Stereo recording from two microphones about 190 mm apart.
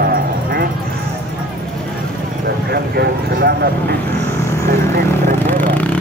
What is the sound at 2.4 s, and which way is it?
Speech, 55° right (ahead or behind).